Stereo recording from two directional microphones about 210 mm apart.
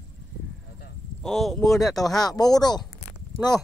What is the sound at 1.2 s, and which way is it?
Speech, centre (ahead or behind).